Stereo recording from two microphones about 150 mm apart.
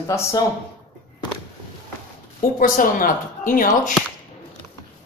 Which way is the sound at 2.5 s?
65° left (ahead or behind).